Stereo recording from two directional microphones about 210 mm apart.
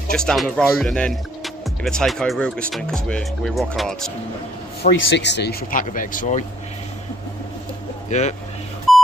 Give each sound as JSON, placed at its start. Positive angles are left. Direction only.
{"t": 0.1, "sound": "speech", "side_deg": 5}
{"t": 4.9, "sound": "speech", "side_deg": 55}
{"t": 8.1, "sound": "speech", "side_deg": 35}